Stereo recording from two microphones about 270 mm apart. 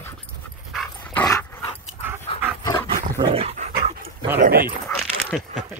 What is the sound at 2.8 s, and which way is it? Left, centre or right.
Dog, right.